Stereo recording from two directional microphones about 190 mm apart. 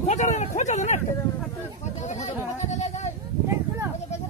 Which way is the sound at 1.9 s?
35° left (ahead or behind).